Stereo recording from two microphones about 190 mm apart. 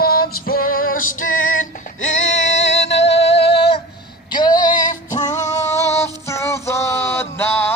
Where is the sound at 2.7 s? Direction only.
70° left (ahead or behind).